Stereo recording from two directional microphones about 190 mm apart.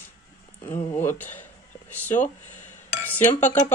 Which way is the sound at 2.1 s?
40° left (ahead or behind).